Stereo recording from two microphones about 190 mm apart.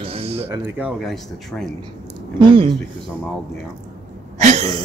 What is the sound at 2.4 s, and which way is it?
Speech, 30° right (ahead or behind).